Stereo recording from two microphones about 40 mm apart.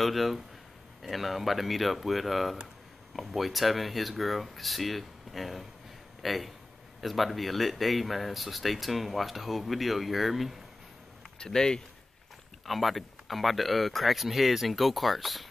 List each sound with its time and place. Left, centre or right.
0.0 s speech: centre
11.3 s speech: centre
12.6 s speech: centre